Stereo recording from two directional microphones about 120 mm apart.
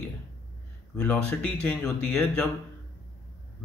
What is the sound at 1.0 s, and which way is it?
Speech, 10° left (ahead or behind).